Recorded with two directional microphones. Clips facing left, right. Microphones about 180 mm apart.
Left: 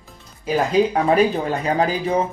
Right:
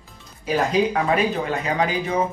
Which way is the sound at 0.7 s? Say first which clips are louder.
Left 4 dB; 35° left (ahead or behind).